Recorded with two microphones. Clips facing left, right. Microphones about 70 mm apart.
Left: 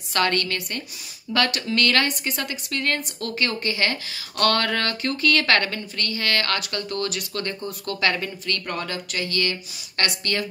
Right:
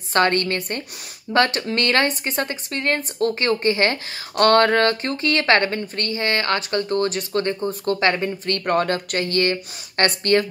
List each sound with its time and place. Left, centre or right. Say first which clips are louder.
0.1 s a woman's voice: right 4 dB; right